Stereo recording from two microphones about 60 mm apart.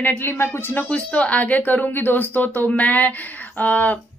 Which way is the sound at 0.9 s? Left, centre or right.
Centre.